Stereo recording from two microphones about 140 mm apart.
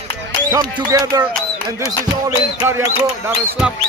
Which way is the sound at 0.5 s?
25° right (ahead or behind).